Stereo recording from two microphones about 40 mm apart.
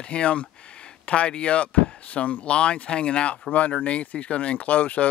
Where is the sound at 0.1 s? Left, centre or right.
Left.